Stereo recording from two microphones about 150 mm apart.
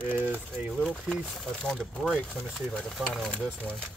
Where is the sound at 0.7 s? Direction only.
5° left (ahead or behind).